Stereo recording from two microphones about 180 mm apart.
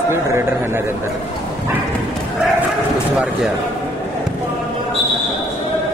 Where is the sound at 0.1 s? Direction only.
15° right (ahead or behind).